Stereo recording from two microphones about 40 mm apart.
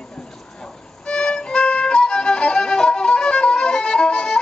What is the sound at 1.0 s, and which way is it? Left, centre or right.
Violin, left.